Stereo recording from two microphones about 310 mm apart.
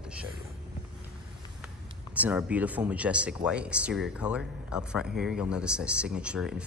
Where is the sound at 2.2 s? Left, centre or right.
Centre.